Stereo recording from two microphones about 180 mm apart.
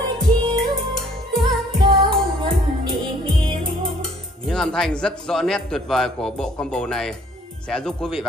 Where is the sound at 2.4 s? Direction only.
30° right (ahead or behind).